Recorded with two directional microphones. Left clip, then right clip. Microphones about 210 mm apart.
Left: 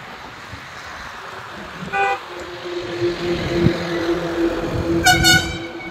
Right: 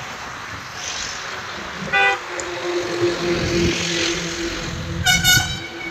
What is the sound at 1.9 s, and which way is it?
Vehicle, 50° left (ahead or behind).